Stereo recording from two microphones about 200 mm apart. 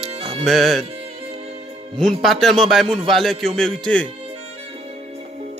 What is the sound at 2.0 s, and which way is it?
A man's voice, centre (ahead or behind).